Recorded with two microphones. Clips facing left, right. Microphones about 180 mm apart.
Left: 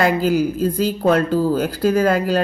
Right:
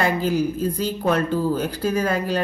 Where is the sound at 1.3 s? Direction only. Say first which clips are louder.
Left 4 dB; 35° left (ahead or behind).